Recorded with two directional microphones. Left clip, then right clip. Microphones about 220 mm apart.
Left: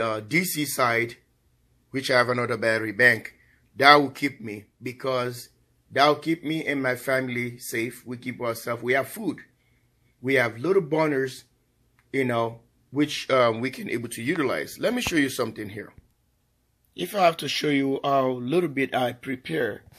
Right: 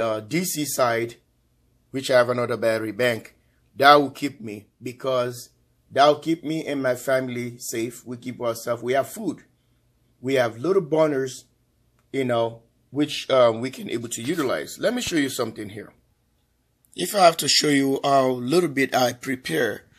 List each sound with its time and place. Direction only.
0.0 s speech: 10° left (ahead or behind)
16.9 s speech: 5° right (ahead or behind)